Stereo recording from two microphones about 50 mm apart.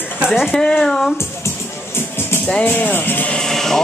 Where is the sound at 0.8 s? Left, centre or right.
Centre.